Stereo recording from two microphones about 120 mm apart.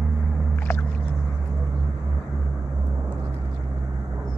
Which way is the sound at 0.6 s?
15° left (ahead or behind).